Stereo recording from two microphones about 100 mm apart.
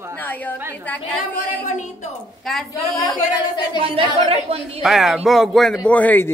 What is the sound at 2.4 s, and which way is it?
Speech, centre (ahead or behind).